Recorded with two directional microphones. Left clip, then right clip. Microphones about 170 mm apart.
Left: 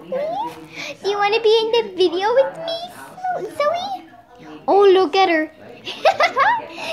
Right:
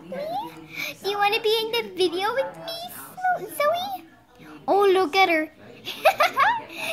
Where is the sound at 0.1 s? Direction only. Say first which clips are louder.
Left 7 dB; 45° right (ahead or behind).